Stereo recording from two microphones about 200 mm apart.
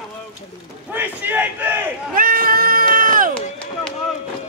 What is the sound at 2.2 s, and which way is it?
Cat, 45° right (ahead or behind).